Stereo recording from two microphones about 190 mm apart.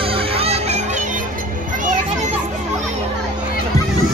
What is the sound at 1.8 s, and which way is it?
Children playing, 45° right (ahead or behind).